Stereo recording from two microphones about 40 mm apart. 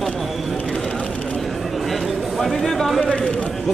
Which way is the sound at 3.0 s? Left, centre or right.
Left.